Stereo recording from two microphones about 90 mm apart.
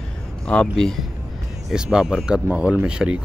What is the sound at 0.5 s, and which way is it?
Speech, 10° left (ahead or behind).